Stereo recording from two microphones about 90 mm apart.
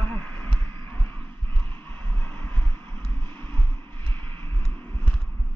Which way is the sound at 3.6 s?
70° right (ahead or behind).